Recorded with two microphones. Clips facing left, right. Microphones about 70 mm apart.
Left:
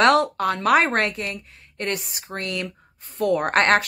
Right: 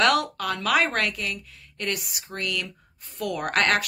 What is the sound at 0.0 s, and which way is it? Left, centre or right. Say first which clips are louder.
Speech: left 5 dB; left.